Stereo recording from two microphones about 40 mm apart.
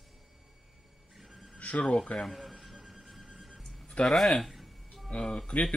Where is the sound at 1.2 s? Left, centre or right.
Centre.